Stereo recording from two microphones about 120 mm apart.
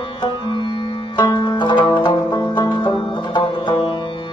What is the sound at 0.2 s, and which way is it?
Sitar, 40° left (ahead or behind).